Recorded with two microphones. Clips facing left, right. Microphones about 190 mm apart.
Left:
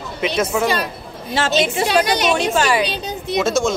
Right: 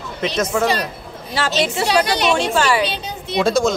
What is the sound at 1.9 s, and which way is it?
Speech, 50° left (ahead or behind).